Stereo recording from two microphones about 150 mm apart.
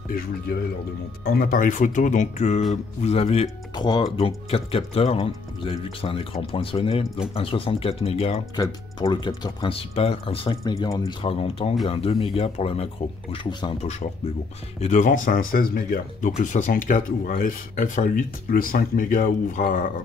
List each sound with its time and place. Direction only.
1.2 s a man's voice: 80° left; by 3.4 s 40° left (ahead or behind)
3.7 s speech: 30° left (ahead or behind)
4.2 s speech: 40° left (ahead or behind)
8.5 s speech: 25° left (ahead or behind)
14.8 s speech: 55° left (ahead or behind)